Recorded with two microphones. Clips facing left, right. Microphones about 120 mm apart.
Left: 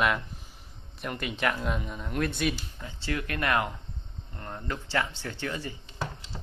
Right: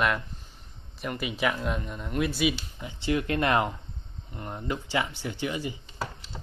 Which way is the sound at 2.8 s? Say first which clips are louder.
Right 5 dB; 15° right (ahead or behind).